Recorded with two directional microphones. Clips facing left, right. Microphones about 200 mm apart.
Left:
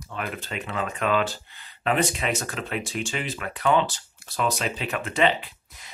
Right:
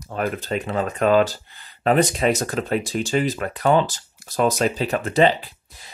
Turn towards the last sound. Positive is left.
turn(degrees=-35)  # may be behind; listen again after turning